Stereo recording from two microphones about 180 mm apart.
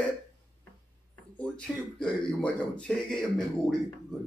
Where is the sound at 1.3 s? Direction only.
5° left (ahead or behind).